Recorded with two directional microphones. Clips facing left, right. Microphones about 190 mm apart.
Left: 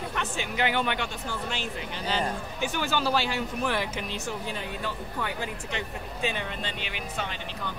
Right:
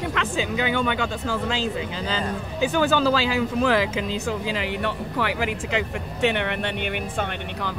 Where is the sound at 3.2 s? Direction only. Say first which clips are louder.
Right 6 dB; 90° right.